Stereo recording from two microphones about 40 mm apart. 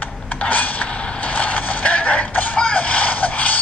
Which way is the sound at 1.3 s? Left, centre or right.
Left.